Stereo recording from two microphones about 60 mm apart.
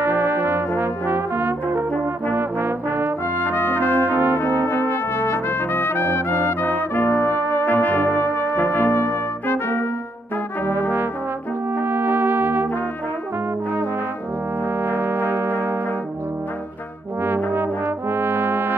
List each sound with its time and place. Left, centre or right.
0.0 s brass instrument: right
2.3 s trombone: right
3.4 s trumpet: left
7.6 s brass instrument: left
8.4 s trumpet: left
11.8 s music: right
14.9 s brass instrument: right
17.2 s trombone: right